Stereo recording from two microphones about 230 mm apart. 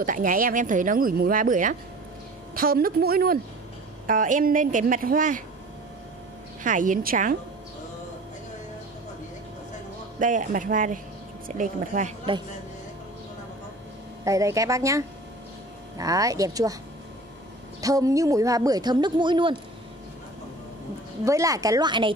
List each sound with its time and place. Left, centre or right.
0.0 s speech: right
6.6 s speech: right
10.1 s speech: right
14.2 s speech: centre
17.7 s speech: centre
21.2 s speech: centre